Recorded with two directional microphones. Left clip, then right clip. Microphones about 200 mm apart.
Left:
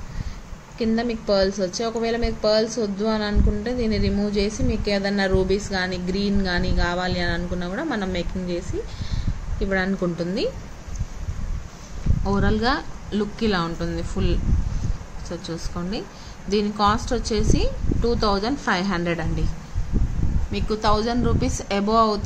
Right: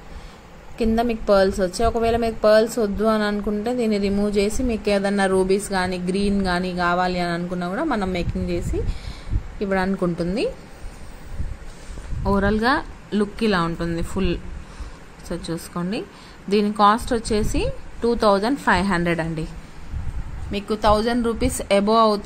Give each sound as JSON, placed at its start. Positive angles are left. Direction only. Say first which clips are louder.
{"t": 0.7, "sound": "a woman's voice", "louder": "right 3 dB", "side_deg": -25}
{"t": 12.3, "sound": "a woman's voice", "louder": "right 3 dB", "side_deg": -25}
{"t": 20.5, "sound": "a woman's voice", "louder": "right 3 dB", "side_deg": -25}